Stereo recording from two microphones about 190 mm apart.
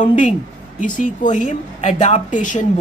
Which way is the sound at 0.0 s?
40° left (ahead or behind).